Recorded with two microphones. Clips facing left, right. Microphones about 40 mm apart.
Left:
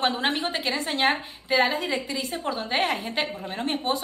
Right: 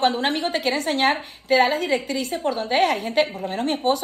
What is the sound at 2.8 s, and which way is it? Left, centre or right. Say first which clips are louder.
Speech: right 6 dB; centre.